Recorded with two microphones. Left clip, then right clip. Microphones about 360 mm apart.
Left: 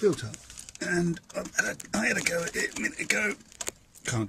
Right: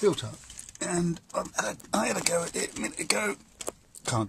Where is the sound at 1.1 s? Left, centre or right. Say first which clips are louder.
Right 2 dB; right.